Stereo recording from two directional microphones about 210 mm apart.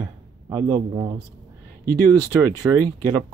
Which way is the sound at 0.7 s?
25° right (ahead or behind).